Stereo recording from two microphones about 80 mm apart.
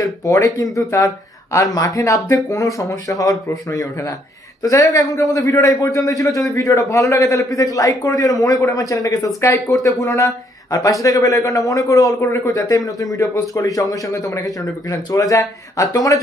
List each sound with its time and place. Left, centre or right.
0.0 s a man's voice: left